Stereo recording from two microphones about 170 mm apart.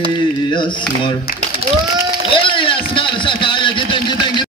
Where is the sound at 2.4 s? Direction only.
30° left (ahead or behind).